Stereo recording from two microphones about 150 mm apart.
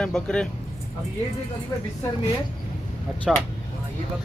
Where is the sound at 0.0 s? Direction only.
5° left (ahead or behind).